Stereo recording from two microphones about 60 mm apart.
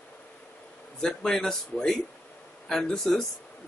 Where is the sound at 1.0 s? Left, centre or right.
Centre.